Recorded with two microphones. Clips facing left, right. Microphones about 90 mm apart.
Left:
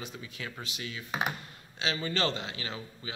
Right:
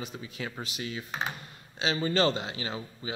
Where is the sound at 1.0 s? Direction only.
15° left (ahead or behind).